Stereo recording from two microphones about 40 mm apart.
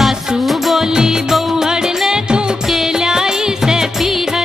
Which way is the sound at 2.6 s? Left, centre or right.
Centre.